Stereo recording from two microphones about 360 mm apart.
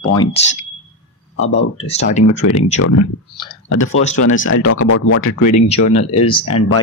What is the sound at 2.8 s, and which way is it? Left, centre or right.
Speech, left.